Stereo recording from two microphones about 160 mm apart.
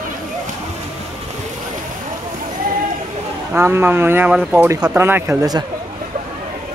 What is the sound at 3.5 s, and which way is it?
Speech, 15° right (ahead or behind).